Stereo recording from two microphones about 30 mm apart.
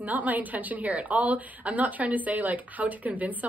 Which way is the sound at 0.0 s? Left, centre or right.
Right.